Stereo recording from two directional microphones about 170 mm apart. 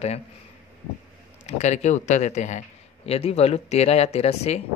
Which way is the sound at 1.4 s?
40° left (ahead or behind).